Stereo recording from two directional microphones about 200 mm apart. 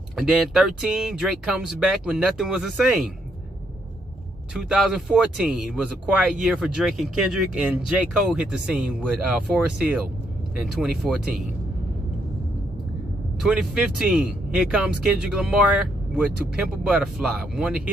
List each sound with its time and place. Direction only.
0.1 s speech: centre (ahead or behind)
4.6 s speech: 5° right (ahead or behind)
13.4 s speech: 5° right (ahead or behind)